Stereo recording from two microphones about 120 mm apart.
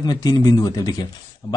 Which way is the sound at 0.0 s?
35° left (ahead or behind).